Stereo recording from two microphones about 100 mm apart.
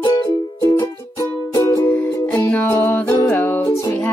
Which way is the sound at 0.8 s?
40° left (ahead or behind).